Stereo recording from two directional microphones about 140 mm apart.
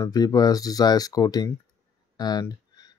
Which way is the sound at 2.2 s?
25° left (ahead or behind).